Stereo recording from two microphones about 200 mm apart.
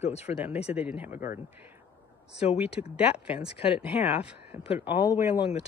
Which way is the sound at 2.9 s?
5° right (ahead or behind).